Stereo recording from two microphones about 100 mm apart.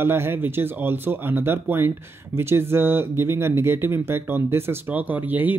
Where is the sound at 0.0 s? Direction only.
25° right (ahead or behind).